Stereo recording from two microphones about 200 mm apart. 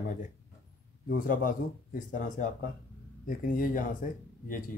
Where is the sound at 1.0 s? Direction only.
45° left (ahead or behind).